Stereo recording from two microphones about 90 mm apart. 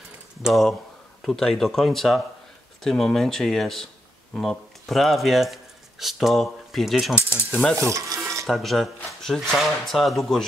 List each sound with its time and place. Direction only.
0.4 s speech: centre (ahead or behind)
7.2 s speech: 15° right (ahead or behind)
7.7 s frying: 35° right (ahead or behind)
8.5 s speech: centre (ahead or behind)